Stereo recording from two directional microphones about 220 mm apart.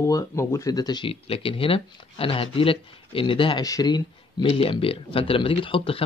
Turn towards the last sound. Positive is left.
turn(degrees=25)  # may be behind; listen again after turning